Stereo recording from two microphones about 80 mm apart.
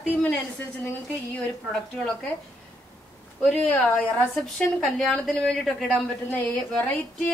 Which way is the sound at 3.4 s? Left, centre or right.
Centre.